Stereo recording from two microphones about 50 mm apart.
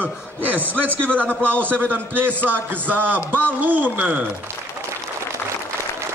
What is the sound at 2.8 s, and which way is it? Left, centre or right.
Speech, right.